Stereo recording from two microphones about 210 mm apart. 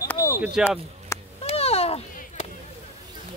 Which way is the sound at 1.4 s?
30° left (ahead or behind).